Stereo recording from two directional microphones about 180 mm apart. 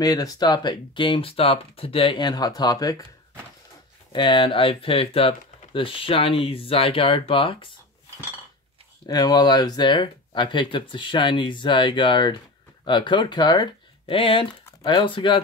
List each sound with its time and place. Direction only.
0.0 s speech: 20° left (ahead or behind)
4.1 s speech: 25° left (ahead or behind)
9.0 s speech: 25° left (ahead or behind)